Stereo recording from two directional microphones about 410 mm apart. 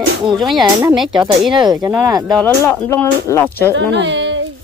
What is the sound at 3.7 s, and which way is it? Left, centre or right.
Speech, right.